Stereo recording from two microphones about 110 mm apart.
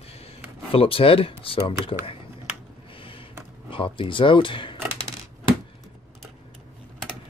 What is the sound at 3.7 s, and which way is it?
Speech, 50° left (ahead or behind).